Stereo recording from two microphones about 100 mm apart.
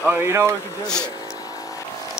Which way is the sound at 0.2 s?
25° right (ahead or behind).